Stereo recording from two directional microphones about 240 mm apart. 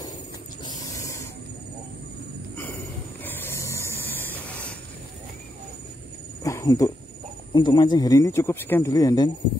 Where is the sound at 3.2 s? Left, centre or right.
Centre.